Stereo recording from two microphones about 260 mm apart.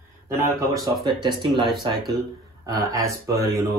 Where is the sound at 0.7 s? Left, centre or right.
Centre.